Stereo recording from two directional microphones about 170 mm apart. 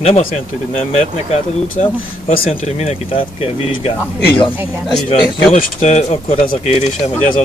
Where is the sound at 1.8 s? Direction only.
45° left (ahead or behind).